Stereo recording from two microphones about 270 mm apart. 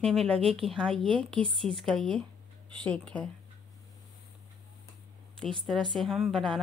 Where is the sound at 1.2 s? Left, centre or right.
Centre.